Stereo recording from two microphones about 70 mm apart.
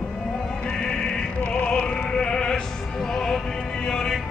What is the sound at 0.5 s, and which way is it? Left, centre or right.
Music, centre.